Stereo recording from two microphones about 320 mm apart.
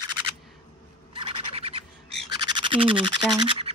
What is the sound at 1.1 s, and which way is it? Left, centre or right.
Bird, centre.